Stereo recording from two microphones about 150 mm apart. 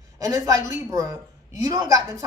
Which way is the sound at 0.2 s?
25° right (ahead or behind).